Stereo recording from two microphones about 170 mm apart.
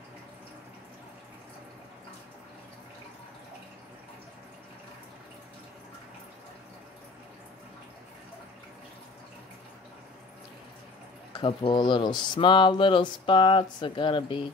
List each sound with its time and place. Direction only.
11.3 s speech: 30° left (ahead or behind)